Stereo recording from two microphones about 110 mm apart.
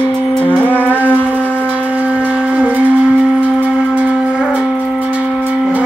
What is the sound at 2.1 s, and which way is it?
Shofar, 10° right (ahead or behind).